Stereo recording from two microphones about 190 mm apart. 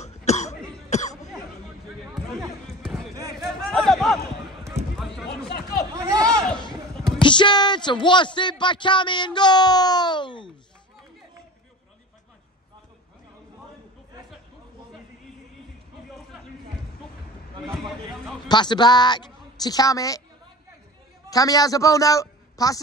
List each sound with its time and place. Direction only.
0.0 s cough: 35° left (ahead or behind)
2.6 s basketball bounce: centre (ahead or behind)
3.3 s a sound: centre (ahead or behind)
5.9 s a sound: 15° right (ahead or behind)
7.2 s speech: 25° left (ahead or behind)
18.5 s a woman's voice: 25° left (ahead or behind)
21.3 s a woman's voice: 20° left (ahead or behind)